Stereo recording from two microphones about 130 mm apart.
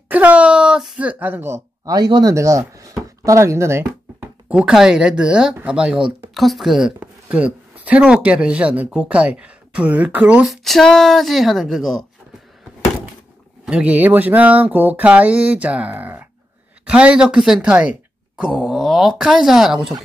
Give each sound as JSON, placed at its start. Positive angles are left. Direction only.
{"t": 0.1, "sound": "speech", "side_deg": -10}
{"t": 2.0, "sound": "speech", "side_deg": -30}
{"t": 10.4, "sound": "speech", "side_deg": 0}
{"t": 13.7, "sound": "a sound", "side_deg": -10}
{"t": 18.4, "sound": "speech", "side_deg": -5}